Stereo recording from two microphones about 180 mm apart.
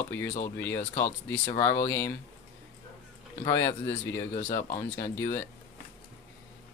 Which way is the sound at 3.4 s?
15° left (ahead or behind).